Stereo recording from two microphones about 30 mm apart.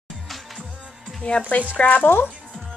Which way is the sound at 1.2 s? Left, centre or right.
Left.